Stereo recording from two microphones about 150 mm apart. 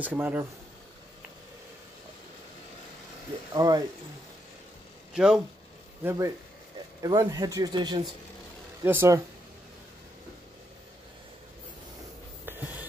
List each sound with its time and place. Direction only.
0.0 s speech: 10° right (ahead or behind)
3.5 s speech: 25° right (ahead or behind)
5.1 s speech: 5° right (ahead or behind)
6.0 s speech: 20° right (ahead or behind)
8.8 s speech: 15° right (ahead or behind)
12.4 s a sound: 10° right (ahead or behind)